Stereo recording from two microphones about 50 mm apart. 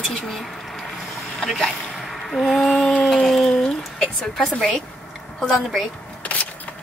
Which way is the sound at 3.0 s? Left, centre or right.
Centre.